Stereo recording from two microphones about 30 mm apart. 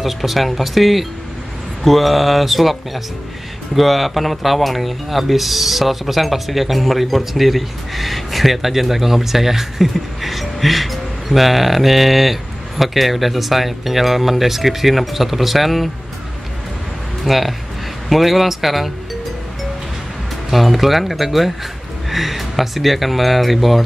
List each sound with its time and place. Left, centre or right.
0.0 s speech: centre
17.2 s speech: centre
20.4 s speech: centre